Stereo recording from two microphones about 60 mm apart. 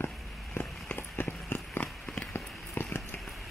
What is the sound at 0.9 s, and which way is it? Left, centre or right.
Run, left.